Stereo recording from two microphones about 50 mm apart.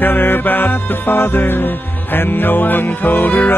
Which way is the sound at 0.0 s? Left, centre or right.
Left.